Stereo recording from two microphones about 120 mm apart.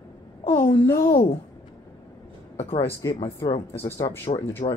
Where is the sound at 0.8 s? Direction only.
25° left (ahead or behind).